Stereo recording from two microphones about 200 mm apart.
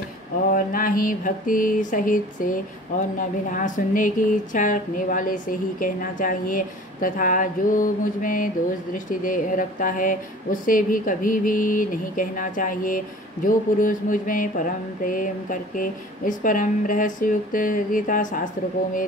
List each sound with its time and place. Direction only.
0.5 s mantra: 45° left (ahead or behind)
3.2 s speech: 40° left (ahead or behind)
8.9 s mantra: 40° left (ahead or behind)